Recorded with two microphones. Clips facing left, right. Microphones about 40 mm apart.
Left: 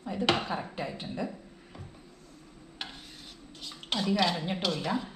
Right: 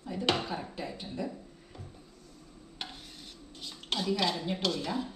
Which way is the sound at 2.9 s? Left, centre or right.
Centre.